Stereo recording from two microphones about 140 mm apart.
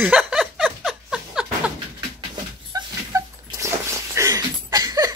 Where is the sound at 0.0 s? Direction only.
10° right (ahead or behind).